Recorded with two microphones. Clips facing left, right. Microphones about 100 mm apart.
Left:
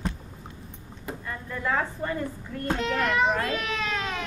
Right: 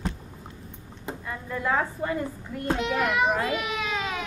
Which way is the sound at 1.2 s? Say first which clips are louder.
Right 2 dB; 10° right (ahead or behind).